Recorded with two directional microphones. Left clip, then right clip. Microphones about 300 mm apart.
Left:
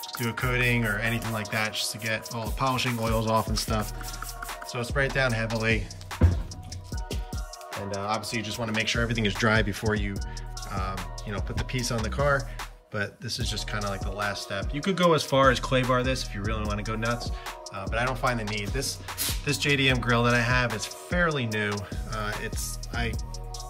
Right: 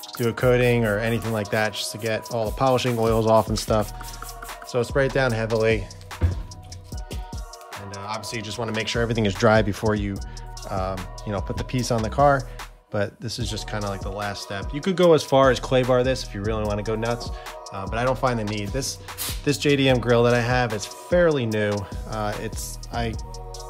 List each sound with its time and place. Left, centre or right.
0.2 s speech: centre
7.7 s speech: centre
17.7 s speech: centre
19.4 s speech: centre